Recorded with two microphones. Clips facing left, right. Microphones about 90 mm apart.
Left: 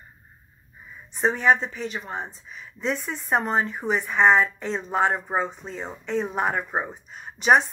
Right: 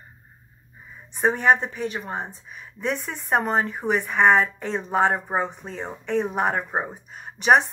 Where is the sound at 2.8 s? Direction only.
60° right (ahead or behind).